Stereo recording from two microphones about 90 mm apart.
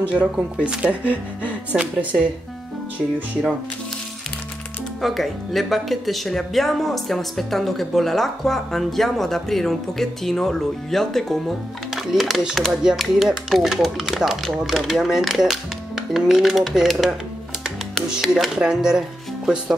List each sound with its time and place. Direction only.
0.1 s speech: 10° right (ahead or behind)
5.0 s speech: centre (ahead or behind)
18.1 s speech: 5° right (ahead or behind)